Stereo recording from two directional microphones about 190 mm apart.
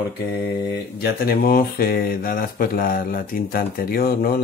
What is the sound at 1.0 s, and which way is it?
Speech, 50° left (ahead or behind).